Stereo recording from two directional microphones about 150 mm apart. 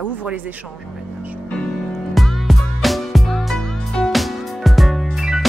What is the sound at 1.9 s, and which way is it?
Music, centre (ahead or behind).